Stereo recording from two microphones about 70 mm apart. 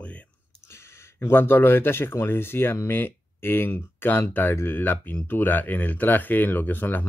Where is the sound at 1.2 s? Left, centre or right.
Left.